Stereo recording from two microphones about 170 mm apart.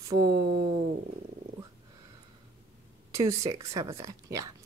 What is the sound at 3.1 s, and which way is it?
Speech, 20° right (ahead or behind).